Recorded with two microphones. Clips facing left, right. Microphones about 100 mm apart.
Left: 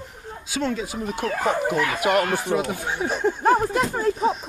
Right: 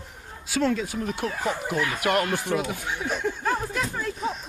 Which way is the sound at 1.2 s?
55° left (ahead or behind).